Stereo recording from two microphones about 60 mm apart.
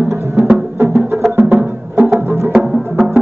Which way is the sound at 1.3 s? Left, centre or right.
Right.